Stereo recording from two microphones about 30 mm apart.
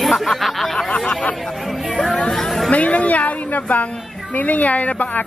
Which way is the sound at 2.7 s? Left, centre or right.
Left.